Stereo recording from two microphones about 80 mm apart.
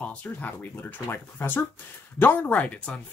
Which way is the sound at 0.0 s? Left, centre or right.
Centre.